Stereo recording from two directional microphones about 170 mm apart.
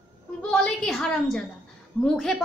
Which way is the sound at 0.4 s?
5° left (ahead or behind).